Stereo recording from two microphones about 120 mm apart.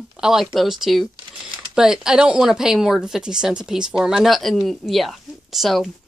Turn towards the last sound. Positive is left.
turn(degrees=0)  # may be behind; listen again after turning